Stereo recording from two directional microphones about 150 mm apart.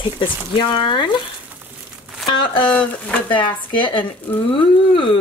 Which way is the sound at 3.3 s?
35° left (ahead or behind).